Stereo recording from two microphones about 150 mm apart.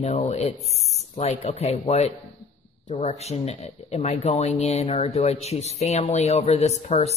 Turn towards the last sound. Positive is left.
turn(degrees=45)  # may be behind; listen again after turning